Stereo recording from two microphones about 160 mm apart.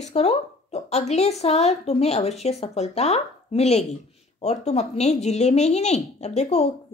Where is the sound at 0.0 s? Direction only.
40° left (ahead or behind).